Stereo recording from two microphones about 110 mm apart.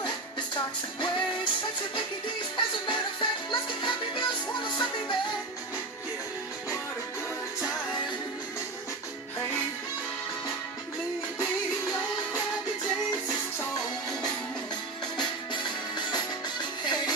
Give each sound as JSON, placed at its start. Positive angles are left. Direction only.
{"t": 2.5, "sound": "music", "side_deg": 45}
{"t": 15.1, "sound": "music", "side_deg": 45}